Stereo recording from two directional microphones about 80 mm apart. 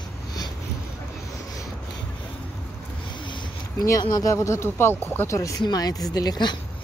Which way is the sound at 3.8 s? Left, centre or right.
Left.